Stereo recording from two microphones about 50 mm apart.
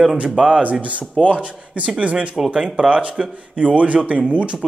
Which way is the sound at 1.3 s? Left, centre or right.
Right.